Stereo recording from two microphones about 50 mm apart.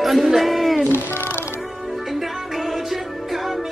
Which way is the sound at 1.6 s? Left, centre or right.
Centre.